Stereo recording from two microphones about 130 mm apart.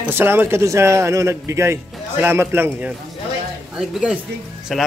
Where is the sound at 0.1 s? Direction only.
15° right (ahead or behind).